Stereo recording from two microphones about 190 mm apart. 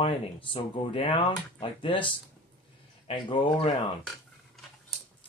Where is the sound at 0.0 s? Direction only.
30° left (ahead or behind).